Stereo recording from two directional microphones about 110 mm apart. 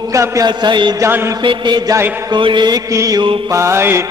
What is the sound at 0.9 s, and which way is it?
Music, 25° right (ahead or behind).